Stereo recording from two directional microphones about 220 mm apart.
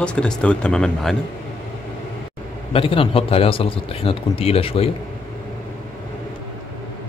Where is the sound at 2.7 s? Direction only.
25° left (ahead or behind).